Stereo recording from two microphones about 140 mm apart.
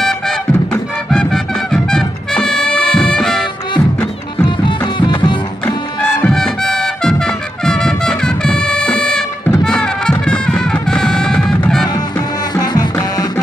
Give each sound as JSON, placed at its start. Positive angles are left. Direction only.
{"t": 1.1, "sound": "music", "side_deg": 5}
{"t": 4.6, "sound": "music", "side_deg": 35}
{"t": 6.2, "sound": "music", "side_deg": 5}
{"t": 12.5, "sound": "music", "side_deg": 25}